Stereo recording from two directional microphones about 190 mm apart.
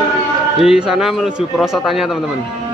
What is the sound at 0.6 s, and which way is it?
Speech, 5° right (ahead or behind).